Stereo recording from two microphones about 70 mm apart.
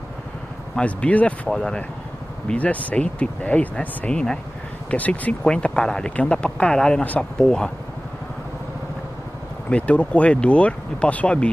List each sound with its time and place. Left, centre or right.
0.7 s speech: centre
5.4 s speech: centre
9.7 s speech: centre